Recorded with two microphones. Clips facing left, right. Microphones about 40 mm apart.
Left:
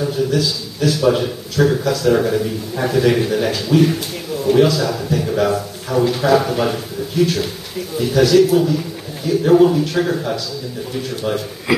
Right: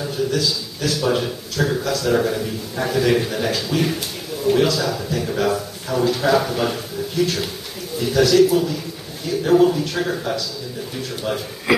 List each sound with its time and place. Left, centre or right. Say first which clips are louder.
0.0 s a man's voice: left 3 dB; centre